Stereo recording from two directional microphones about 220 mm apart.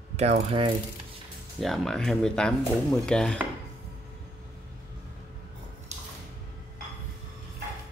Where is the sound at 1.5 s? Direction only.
Centre (ahead or behind).